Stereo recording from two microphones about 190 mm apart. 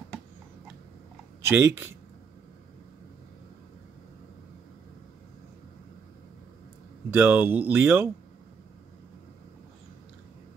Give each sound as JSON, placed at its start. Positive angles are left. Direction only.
{"t": 1.5, "sound": "speech", "side_deg": -10}
{"t": 7.1, "sound": "speech", "side_deg": -10}